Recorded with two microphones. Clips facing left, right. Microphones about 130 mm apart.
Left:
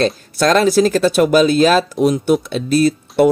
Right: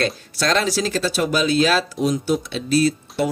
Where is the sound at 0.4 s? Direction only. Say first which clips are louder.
Left 8 dB; 50° left (ahead or behind).